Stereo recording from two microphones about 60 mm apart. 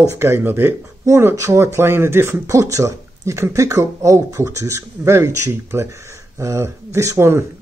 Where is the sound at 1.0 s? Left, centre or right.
Right.